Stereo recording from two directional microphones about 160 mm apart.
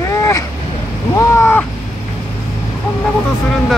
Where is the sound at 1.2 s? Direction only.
15° left (ahead or behind).